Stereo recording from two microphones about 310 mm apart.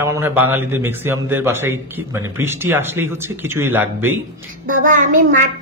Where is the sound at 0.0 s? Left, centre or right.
Centre.